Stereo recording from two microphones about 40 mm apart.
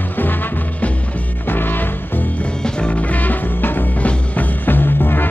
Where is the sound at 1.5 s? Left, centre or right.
Left.